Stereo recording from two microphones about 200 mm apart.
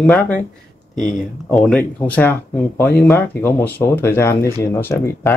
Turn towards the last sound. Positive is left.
turn(degrees=15)  # may be behind; listen again after turning